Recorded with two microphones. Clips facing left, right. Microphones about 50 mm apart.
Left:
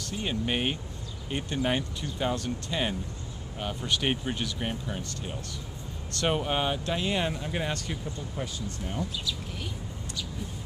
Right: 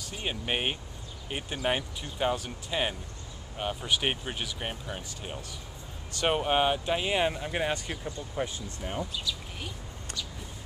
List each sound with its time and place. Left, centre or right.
0.0 s speech: centre